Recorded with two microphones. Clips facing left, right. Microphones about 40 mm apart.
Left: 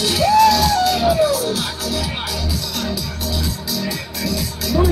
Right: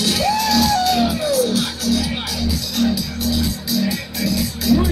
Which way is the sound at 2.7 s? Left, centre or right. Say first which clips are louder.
Right 5 dB; centre.